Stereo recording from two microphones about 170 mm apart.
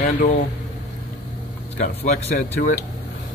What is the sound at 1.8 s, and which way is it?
Speech, 40° left (ahead or behind).